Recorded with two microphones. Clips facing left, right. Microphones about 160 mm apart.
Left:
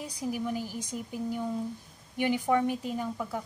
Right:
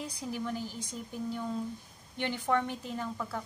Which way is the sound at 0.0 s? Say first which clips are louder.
Left 3 dB; 15° left (ahead or behind).